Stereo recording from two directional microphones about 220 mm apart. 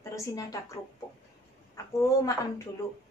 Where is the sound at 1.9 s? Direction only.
15° left (ahead or behind).